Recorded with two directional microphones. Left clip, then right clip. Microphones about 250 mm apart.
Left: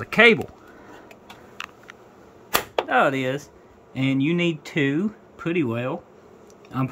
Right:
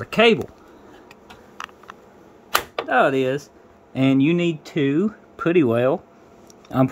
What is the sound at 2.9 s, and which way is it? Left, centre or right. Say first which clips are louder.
Speech: right 3 dB; centre.